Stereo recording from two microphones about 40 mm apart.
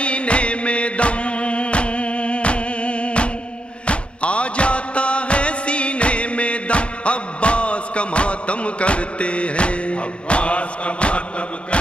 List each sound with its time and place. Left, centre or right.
0.0 s music: left